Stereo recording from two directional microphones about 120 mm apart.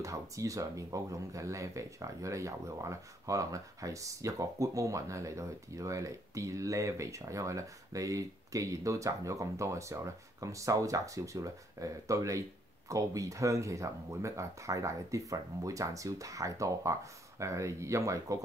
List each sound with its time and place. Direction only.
0.0 s speech: 25° right (ahead or behind)